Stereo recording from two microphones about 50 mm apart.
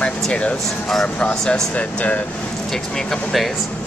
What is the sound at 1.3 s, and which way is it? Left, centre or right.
Speech, centre.